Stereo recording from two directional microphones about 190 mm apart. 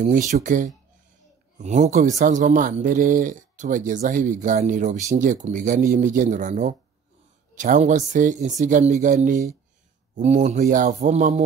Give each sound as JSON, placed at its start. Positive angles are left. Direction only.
{"t": 0.3, "sound": "speech", "side_deg": -40}